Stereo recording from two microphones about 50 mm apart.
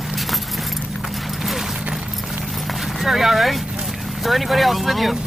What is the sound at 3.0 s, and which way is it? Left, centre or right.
Speech, centre.